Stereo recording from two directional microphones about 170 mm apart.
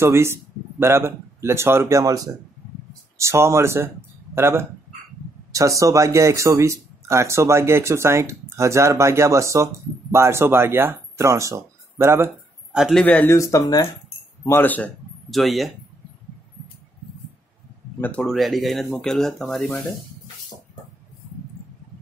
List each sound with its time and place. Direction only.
0.0 s speech: 15° right (ahead or behind)
12.7 s a man's voice: centre (ahead or behind)
13.0 s speech: 10° left (ahead or behind)
18.0 s speech: 5° left (ahead or behind)